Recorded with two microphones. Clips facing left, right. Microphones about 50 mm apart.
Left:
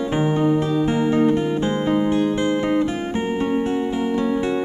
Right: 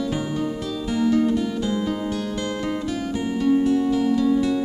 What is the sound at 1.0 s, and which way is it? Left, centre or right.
Music, left.